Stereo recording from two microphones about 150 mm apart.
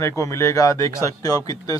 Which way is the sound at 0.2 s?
20° left (ahead or behind).